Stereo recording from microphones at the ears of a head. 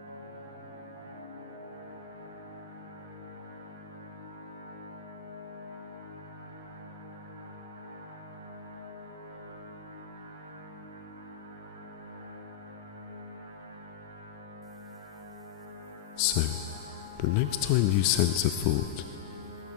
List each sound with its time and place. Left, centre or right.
16.2 s music: left
17.2 s speech: left